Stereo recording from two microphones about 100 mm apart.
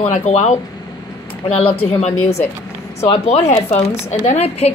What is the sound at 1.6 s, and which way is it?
A woman's voice, 80° left.